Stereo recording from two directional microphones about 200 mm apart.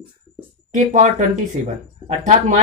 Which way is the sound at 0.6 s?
35° right (ahead or behind).